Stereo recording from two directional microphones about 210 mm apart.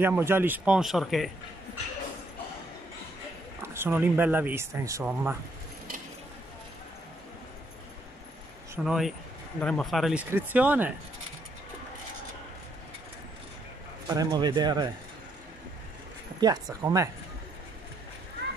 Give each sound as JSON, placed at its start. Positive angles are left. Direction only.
{"t": 0.0, "sound": "speech", "side_deg": -10}
{"t": 3.6, "sound": "speech", "side_deg": -10}
{"t": 8.7, "sound": "speech", "side_deg": 0}
{"t": 14.0, "sound": "speech", "side_deg": -15}
{"t": 16.3, "sound": "speech", "side_deg": -20}